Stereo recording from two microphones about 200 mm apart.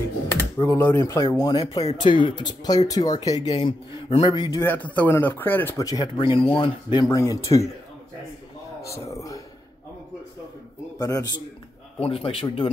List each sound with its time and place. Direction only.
0.3 s speech: 15° left (ahead or behind)
4.6 s speech: 10° left (ahead or behind)
9.1 s a sound: 15° left (ahead or behind)
11.0 s speech: 15° left (ahead or behind)
12.0 s speech: 30° left (ahead or behind)